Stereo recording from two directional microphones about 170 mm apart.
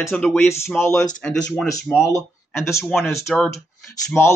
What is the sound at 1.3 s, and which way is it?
Speech, centre (ahead or behind).